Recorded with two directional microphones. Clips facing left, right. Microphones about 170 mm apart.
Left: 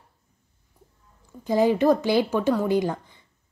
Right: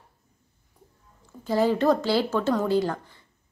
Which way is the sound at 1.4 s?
15° left (ahead or behind).